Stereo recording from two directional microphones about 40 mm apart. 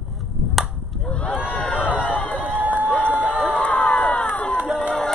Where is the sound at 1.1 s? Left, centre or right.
Left.